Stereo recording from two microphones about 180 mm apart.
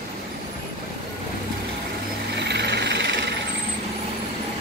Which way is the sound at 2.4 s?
70° right (ahead or behind).